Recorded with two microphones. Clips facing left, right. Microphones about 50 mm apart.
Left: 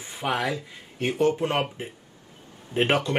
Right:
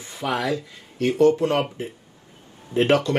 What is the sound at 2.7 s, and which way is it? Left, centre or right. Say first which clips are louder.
Speech: right 4 dB; left.